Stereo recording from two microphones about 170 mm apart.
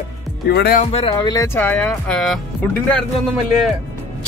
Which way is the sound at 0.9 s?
35° left (ahead or behind).